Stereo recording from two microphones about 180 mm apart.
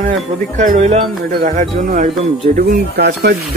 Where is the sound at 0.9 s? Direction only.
50° right (ahead or behind).